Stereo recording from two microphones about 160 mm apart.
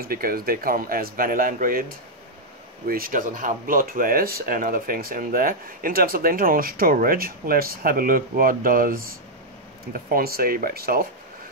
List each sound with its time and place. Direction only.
0.0 s speech: 65° right (ahead or behind)